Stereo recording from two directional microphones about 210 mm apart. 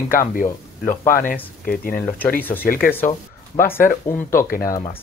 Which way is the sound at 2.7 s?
45° left (ahead or behind).